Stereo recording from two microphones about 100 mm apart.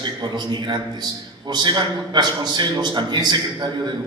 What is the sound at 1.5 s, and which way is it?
A man's voice, 45° right (ahead or behind).